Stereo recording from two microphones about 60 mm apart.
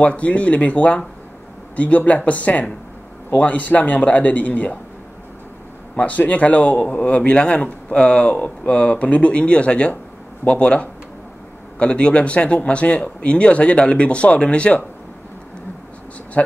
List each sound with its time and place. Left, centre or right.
0.0 s a man's voice: left
5.9 s a man's voice: left
16.4 s a man's voice: left